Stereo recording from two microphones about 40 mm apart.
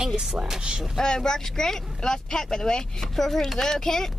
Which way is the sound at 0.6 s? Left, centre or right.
Right.